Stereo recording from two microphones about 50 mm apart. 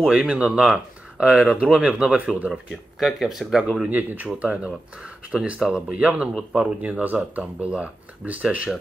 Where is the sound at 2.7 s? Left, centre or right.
Centre.